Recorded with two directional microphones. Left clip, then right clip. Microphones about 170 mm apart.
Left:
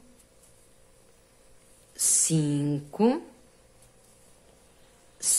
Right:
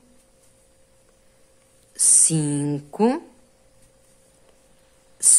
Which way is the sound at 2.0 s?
15° right (ahead or behind).